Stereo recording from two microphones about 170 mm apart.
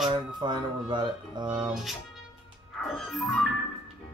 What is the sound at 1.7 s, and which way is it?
Music, centre (ahead or behind).